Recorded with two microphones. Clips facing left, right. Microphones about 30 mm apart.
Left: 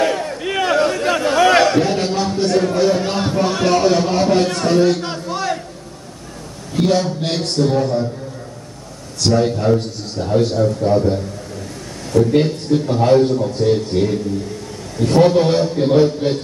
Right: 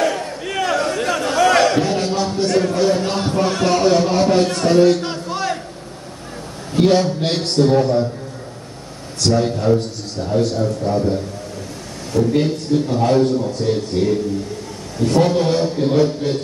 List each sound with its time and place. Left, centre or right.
0.0 s a sound: centre
0.4 s a sound: left
1.7 s speech: centre
6.8 s a man's voice: centre
9.2 s a man's voice: centre
12.1 s speech: centre
12.7 s a man's voice: centre